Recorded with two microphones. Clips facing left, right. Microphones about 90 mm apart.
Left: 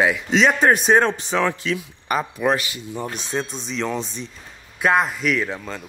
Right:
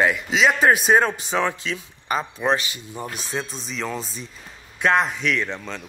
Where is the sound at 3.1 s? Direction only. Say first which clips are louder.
Left 3 dB; centre (ahead or behind).